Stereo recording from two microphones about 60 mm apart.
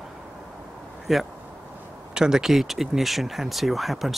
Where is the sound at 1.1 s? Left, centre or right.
Centre.